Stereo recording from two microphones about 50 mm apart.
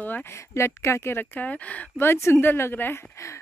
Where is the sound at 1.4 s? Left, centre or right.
Left.